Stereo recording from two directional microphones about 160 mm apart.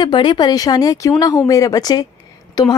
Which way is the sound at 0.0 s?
30° left (ahead or behind).